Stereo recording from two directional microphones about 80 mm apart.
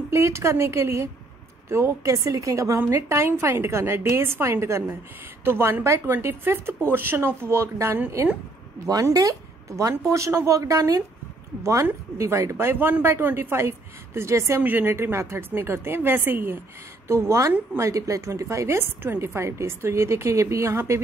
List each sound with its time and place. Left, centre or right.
0.1 s a woman's voice: right
9.1 s a woman's voice: right
14.6 s a woman's voice: right